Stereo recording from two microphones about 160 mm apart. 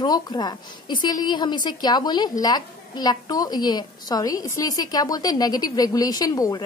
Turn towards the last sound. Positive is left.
turn(degrees=20)  # may be behind; listen again after turning